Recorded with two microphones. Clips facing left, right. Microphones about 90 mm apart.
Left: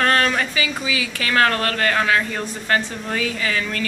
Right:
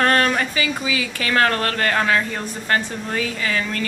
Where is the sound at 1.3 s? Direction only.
25° right (ahead or behind).